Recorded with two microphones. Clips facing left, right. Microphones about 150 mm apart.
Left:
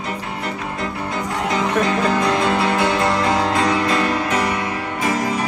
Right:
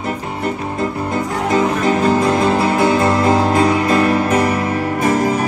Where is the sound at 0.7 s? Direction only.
30° right (ahead or behind).